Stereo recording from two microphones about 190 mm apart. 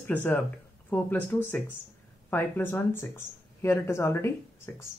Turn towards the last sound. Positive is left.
turn(degrees=15)  # may be behind; listen again after turning